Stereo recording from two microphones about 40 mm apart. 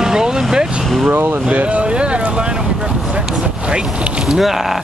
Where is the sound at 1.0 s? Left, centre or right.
Right.